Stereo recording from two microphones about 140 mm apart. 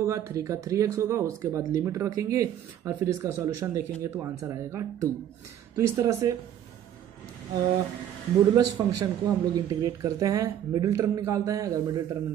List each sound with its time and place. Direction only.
0.0 s speech: 20° right (ahead or behind)
8.5 s speech: 30° right (ahead or behind)